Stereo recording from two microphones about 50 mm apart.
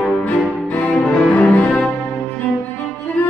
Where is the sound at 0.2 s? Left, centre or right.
Left.